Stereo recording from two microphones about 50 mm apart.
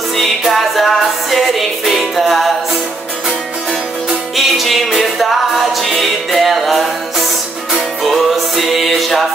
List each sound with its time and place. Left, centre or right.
0.4 s music: centre
4.4 s music: centre